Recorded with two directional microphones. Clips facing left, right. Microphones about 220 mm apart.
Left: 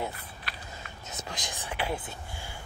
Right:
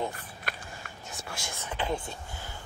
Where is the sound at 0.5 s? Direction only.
45° right (ahead or behind).